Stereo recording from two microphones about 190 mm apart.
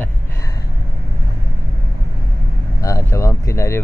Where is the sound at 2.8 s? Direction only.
15° left (ahead or behind).